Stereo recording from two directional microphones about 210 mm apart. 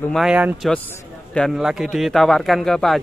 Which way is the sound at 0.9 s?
10° left (ahead or behind).